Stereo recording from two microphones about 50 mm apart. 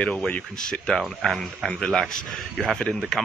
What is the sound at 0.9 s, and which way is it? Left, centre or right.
Speech, centre.